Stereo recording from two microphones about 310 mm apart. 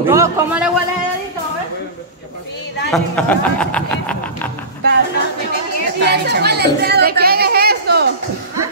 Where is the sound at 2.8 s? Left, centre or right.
Centre.